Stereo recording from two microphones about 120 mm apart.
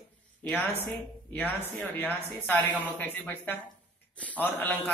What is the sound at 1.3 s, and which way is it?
A woman's voice, 15° left (ahead or behind).